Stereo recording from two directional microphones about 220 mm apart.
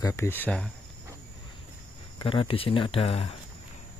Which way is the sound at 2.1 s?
25° left (ahead or behind).